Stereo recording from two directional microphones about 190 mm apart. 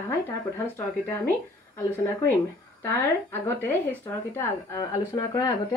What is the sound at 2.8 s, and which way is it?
Speech, 15° left (ahead or behind).